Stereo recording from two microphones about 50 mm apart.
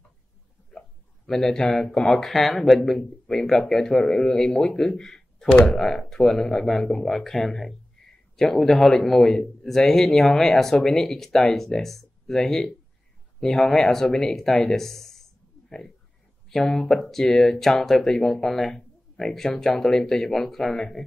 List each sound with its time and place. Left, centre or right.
0.7 s a sound: centre
2.0 s a man's voice: centre
5.5 s speech: left
5.8 s a man's voice: centre